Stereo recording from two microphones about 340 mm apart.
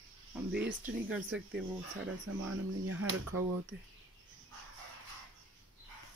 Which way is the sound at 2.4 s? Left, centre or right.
Right.